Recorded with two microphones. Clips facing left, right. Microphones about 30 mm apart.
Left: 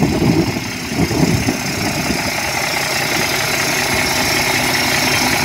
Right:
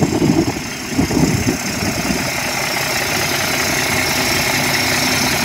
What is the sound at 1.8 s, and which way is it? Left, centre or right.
Vehicle, centre.